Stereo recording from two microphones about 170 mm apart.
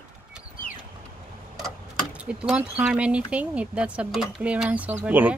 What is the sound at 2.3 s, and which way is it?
Speech, 5° right (ahead or behind).